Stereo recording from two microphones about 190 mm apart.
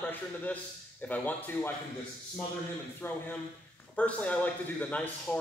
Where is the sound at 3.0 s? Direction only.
10° left (ahead or behind).